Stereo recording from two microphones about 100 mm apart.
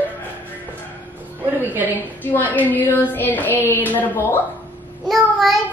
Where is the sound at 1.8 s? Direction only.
20° right (ahead or behind).